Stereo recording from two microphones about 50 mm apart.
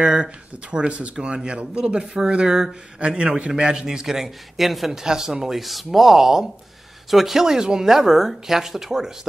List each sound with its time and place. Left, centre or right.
0.0 s a man's voice: centre